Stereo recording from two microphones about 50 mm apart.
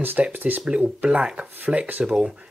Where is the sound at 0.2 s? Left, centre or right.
Right; by 2.3 s centre.